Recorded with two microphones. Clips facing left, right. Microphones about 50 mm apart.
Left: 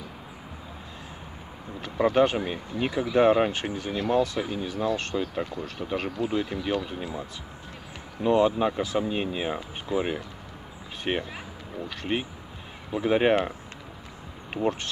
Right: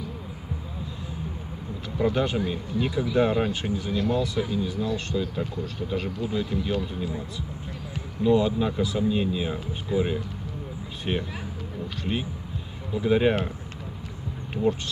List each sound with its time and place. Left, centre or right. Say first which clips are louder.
2.0 s speech: left 4 dB; left
2.3 s speech: right 2 dB; left
14.5 s speech: right 2 dB; left